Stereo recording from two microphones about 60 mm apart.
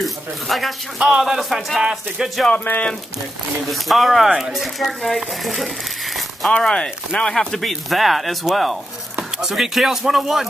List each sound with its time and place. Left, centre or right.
0.0 s speech: centre
0.9 s speech: centre
2.6 s speech: left
3.7 s speech: centre
6.5 s speech: centre